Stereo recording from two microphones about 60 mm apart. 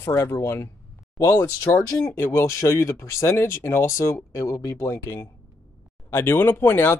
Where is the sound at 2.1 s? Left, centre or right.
Left.